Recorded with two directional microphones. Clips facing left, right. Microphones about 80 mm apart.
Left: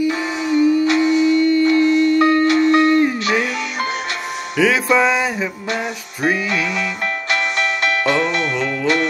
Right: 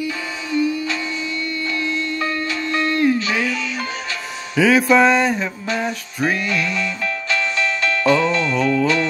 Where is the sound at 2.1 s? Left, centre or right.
Left.